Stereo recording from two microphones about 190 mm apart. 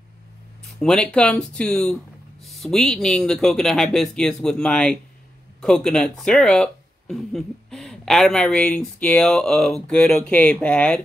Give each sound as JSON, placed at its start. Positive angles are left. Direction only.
{"t": 0.7, "sound": "speech", "side_deg": 5}